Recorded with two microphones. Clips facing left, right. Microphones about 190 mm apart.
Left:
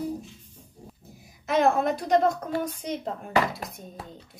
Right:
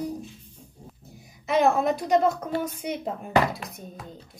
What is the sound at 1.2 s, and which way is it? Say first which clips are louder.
A woman's voice: right 1 dB; centre (ahead or behind).